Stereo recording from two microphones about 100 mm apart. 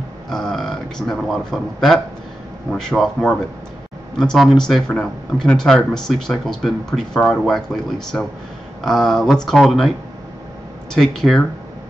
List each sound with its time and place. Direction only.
0.3 s speech: 5° left (ahead or behind)
11.0 s speech: 5° left (ahead or behind)